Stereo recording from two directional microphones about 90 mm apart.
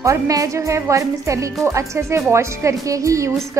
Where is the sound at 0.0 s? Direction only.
35° right (ahead or behind).